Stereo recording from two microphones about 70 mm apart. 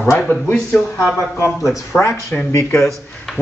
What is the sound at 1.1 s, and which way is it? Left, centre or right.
Speech, left.